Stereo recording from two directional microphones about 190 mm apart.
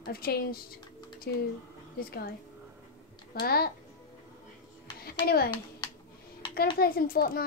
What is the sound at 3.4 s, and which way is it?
Speech, 55° left (ahead or behind).